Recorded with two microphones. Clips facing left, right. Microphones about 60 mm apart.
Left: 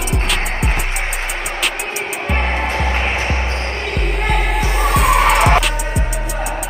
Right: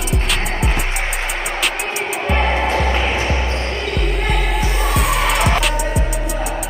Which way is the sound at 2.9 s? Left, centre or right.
Left.